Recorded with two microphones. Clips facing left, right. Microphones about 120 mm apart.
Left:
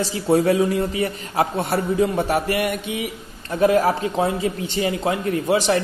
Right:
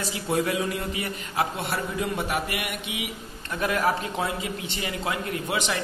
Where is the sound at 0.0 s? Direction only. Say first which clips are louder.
Left 8 dB; 35° left (ahead or behind).